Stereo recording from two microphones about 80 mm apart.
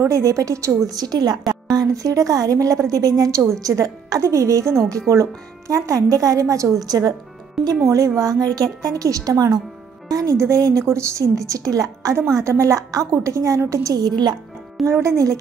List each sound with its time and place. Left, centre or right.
0.0 s a woman's voice: right
0.8 s a woman's voice: right
8.2 s a woman's voice: right
14.9 s a woman's voice: right